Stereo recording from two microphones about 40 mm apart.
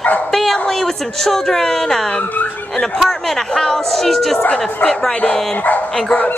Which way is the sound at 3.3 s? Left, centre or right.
Centre.